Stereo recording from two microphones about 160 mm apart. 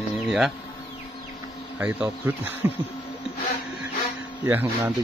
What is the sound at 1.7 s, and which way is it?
Speech, 10° right (ahead or behind).